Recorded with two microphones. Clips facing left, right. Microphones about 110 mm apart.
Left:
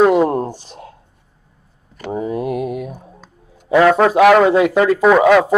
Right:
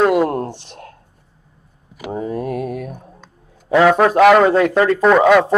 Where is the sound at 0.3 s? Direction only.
10° left (ahead or behind).